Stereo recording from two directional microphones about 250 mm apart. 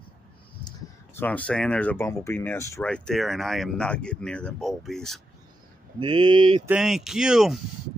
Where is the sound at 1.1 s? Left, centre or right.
Centre.